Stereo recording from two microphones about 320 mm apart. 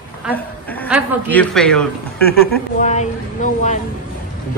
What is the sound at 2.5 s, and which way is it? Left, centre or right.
A woman's voice, left.